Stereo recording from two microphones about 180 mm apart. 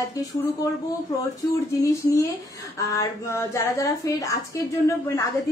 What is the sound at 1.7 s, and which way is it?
Speech, 15° left (ahead or behind).